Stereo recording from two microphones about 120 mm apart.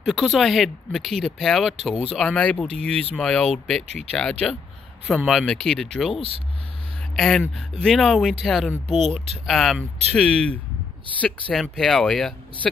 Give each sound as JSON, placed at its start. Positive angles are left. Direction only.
{"t": 0.0, "sound": "speech", "side_deg": 0}
{"t": 3.8, "sound": "speech", "side_deg": -65}
{"t": 4.1, "sound": "speech", "side_deg": 5}